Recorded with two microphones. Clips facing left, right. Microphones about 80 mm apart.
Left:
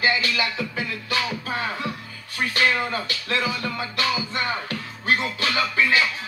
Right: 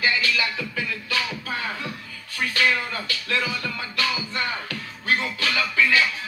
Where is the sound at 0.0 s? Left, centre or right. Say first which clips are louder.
Left 1 dB; left.